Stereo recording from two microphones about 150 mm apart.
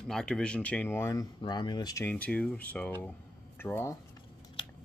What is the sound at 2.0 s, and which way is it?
Speech, 10° left (ahead or behind).